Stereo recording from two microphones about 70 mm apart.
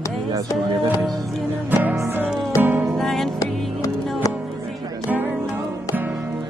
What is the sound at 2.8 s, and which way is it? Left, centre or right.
Music, centre.